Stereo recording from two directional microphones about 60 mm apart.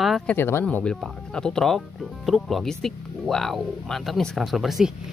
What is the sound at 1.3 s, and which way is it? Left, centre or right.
Speech, centre.